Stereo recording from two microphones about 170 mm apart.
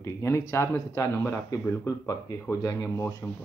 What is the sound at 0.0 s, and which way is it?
Speech, 15° left (ahead or behind).